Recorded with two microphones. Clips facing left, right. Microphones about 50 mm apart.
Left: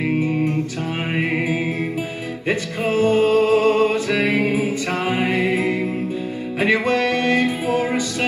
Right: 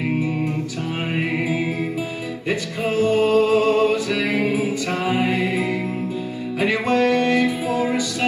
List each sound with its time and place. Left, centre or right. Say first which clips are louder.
2.4 s music: left 2 dB; left